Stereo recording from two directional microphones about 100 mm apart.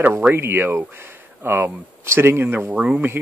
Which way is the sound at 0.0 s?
20° right (ahead or behind).